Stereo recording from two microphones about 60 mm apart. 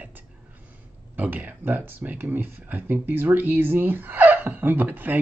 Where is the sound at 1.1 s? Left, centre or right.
Right.